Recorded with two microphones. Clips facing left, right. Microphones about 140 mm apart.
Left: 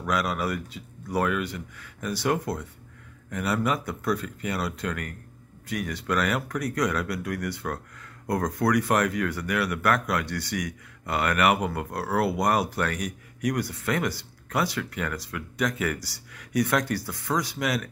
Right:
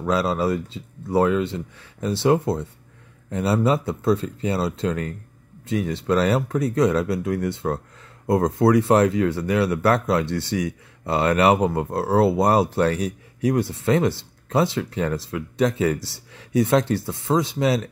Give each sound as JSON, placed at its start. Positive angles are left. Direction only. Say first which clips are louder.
{"t": 0.0, "sound": "speech", "louder": "right 6 dB", "side_deg": -30}